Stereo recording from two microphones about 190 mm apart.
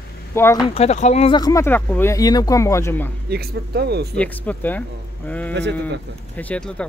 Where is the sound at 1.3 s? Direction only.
20° left (ahead or behind).